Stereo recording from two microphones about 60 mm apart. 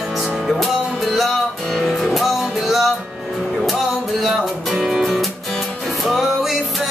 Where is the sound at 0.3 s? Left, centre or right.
Centre.